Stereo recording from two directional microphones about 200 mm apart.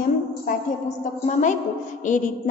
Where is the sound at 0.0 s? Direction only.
40° left (ahead or behind).